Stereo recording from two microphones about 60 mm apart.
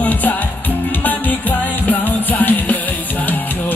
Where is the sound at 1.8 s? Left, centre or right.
Left.